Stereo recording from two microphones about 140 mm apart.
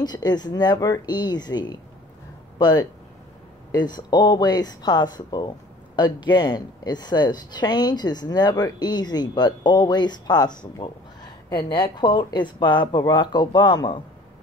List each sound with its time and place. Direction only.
0.0 s speech: 30° left (ahead or behind)